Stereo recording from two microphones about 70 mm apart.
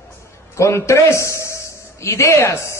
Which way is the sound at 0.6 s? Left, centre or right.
Left.